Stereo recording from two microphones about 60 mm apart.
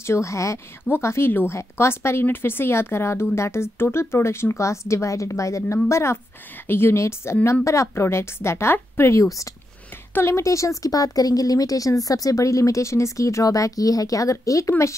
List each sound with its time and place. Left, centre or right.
0.0 s a woman's voice: left
9.2 s a woman's voice: left
10.1 s a woman's voice: left
10.8 s a woman's voice: left